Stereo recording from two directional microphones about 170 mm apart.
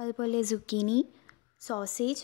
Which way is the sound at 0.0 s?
35° left (ahead or behind).